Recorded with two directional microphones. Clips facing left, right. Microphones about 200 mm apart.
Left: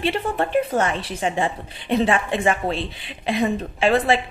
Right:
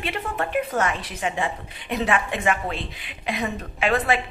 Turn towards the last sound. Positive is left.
turn(degrees=30)  # may be behind; listen again after turning